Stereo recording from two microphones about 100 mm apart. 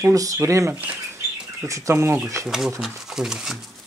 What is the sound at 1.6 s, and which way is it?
Speech, 30° right (ahead or behind).